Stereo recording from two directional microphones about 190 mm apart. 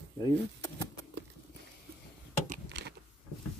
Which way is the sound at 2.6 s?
65° right (ahead or behind).